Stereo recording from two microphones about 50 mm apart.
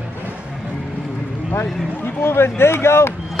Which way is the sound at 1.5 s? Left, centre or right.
Left.